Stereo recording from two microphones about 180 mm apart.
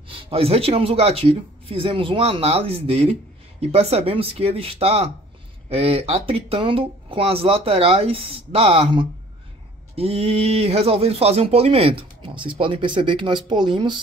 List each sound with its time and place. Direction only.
0.1 s speech: 30° right (ahead or behind)